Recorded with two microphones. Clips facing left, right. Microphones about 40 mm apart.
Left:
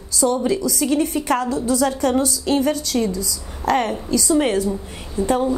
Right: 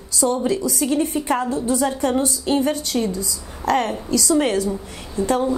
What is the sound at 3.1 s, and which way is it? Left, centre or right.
Speech, right.